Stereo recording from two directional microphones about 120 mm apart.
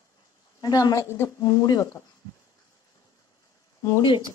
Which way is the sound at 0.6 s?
30° left (ahead or behind).